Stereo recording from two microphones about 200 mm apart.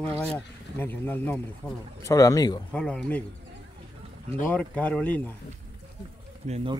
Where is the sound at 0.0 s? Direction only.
5° left (ahead or behind).